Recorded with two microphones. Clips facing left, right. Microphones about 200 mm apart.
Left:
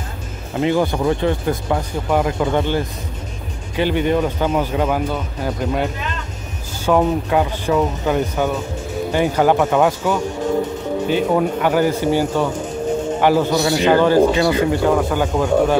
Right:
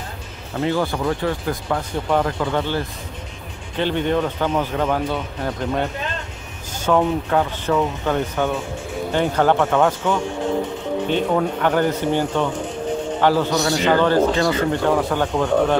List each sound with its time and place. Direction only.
0.6 s a man's voice: 15° left (ahead or behind)
6.9 s a man's voice: 10° left (ahead or behind)